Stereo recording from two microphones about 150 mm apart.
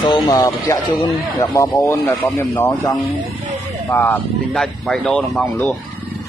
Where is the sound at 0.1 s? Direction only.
25° left (ahead or behind); by 5.5 s centre (ahead or behind).